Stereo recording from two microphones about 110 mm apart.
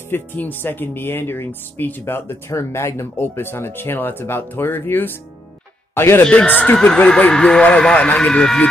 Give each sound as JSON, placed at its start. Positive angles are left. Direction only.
{"t": 0.1, "sound": "a man's voice", "side_deg": 20}